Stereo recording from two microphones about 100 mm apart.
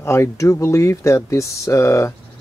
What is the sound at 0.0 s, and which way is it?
Speech, 30° left (ahead or behind).